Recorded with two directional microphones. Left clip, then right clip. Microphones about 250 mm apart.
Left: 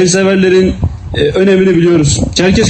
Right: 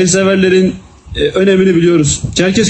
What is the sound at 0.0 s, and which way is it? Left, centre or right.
A man's voice, right.